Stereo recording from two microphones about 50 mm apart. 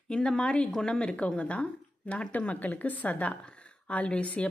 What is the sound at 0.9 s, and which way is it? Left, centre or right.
A woman's voice, left.